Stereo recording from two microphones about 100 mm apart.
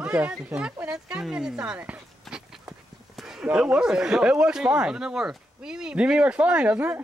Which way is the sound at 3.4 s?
10° right (ahead or behind).